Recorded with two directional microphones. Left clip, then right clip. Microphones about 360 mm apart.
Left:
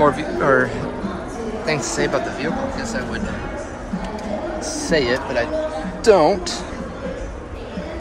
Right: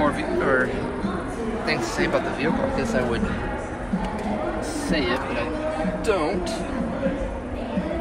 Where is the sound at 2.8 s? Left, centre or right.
Centre.